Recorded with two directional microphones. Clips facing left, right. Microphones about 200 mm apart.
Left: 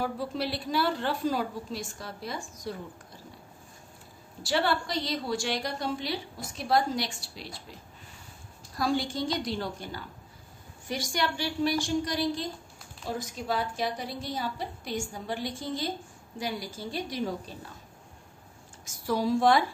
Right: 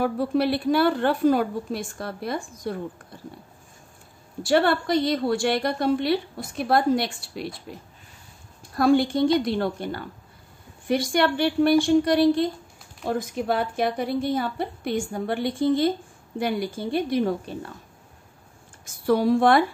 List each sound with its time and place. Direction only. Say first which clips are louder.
0.0 s a woman's voice: right 9 dB; 60° right (ahead or behind)
4.4 s a woman's voice: right 7 dB; 55° right (ahead or behind)
8.7 s a woman's voice: right 10 dB; 55° right (ahead or behind)
18.9 s a woman's voice: right 7 dB; 60° right (ahead or behind)